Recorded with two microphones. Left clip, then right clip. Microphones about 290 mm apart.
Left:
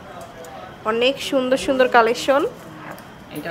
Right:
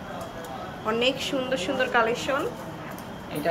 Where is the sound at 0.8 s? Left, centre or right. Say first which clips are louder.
Left 6 dB; centre.